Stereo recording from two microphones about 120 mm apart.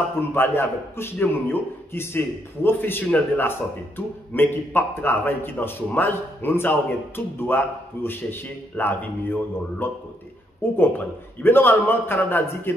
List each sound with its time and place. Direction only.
0.3 s a man's voice: 20° left (ahead or behind)